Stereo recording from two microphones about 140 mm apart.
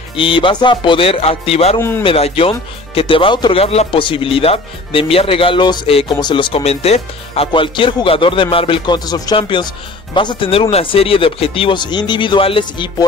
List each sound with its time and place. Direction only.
0.1 s speech: 40° left (ahead or behind)
1.8 s speech: 15° left (ahead or behind)
2.0 s speech: 45° left (ahead or behind)